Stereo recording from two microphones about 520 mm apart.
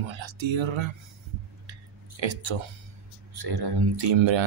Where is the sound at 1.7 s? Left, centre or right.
Right.